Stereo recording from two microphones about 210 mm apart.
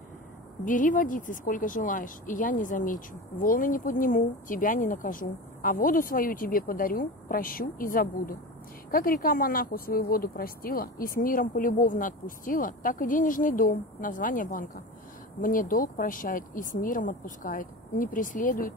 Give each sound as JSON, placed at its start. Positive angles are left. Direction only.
{"t": 0.7, "sound": "speech", "side_deg": 40}